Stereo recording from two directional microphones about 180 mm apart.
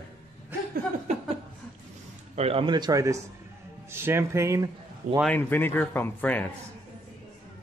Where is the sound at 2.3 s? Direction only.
30° right (ahead or behind); by 4.7 s 15° right (ahead or behind).